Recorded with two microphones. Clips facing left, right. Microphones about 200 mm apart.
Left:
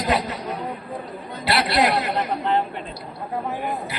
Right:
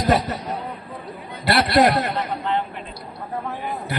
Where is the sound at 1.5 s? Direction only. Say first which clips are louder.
Right 4 dB; 45° right (ahead or behind).